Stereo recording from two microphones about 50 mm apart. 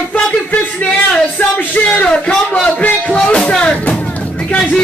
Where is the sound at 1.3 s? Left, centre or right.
Left.